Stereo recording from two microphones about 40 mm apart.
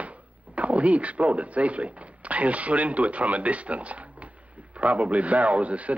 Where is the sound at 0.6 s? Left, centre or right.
Right.